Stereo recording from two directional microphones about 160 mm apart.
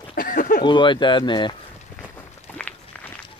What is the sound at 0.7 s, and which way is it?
Speech, 30° left (ahead or behind).